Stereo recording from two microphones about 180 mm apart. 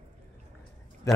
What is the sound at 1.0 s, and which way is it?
Speech, 15° left (ahead or behind).